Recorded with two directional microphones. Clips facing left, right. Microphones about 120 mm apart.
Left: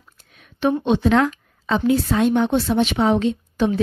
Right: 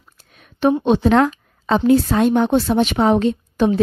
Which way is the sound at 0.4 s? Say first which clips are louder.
Right 4 dB; 40° right (ahead or behind).